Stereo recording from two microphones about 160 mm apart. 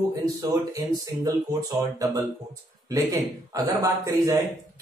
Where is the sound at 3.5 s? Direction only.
20° right (ahead or behind).